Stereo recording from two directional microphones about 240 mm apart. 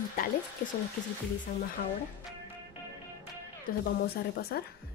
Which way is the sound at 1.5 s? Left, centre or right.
Left.